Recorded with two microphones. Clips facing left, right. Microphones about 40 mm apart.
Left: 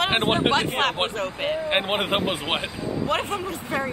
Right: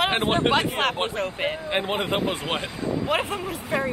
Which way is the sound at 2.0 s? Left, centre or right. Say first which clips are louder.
Left 1 dB; left.